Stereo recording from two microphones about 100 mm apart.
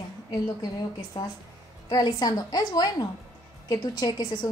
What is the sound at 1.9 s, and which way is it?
A woman's voice, 40° left (ahead or behind).